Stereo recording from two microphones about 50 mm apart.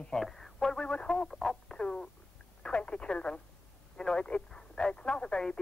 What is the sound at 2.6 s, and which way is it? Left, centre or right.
Speech, left.